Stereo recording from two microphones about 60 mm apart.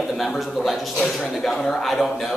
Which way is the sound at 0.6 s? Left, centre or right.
Centre.